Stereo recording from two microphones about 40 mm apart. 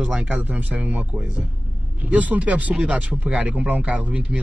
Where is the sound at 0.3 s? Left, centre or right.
Right.